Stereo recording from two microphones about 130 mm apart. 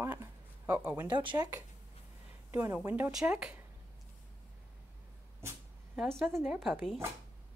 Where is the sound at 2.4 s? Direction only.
15° right (ahead or behind).